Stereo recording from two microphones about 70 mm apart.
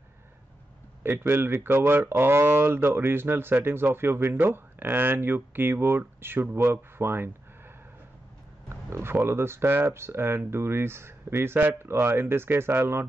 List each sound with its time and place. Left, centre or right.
1.0 s speech: right
8.6 s speech: right